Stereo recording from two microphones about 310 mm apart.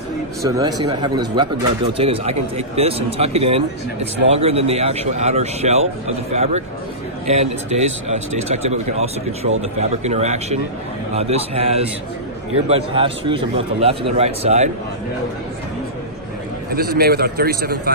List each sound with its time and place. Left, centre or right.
0.4 s speech: centre
16.7 s speech: right